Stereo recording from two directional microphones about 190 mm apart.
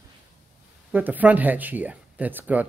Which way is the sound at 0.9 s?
10° right (ahead or behind).